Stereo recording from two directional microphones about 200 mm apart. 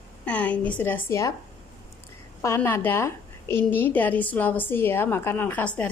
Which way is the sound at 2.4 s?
15° left (ahead or behind).